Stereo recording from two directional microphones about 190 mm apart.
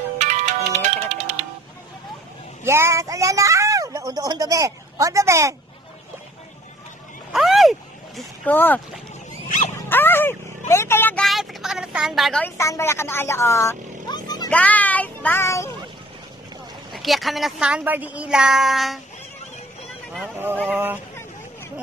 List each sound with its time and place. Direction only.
0.2 s music: 40° right (ahead or behind)
2.6 s speech: 15° right (ahead or behind)
7.3 s vehicle: centre (ahead or behind)
8.5 s speech: 10° left (ahead or behind)
9.8 s dog: 10° left (ahead or behind)
10.7 s a sound: 15° left (ahead or behind)
14.5 s speech: 10° left (ahead or behind)
16.9 s speech: centre (ahead or behind)
20.6 s fowl: 10° right (ahead or behind)